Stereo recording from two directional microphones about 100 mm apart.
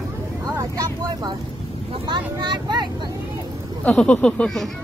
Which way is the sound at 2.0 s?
50° right (ahead or behind).